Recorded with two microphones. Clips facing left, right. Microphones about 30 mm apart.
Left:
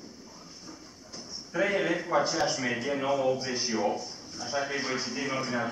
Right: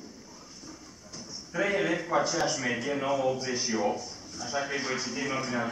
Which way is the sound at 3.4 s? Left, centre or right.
Centre.